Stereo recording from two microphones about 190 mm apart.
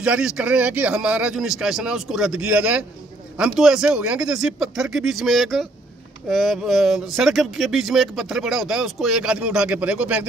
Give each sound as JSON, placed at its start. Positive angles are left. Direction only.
{"t": 0.0, "sound": "speech", "side_deg": -5}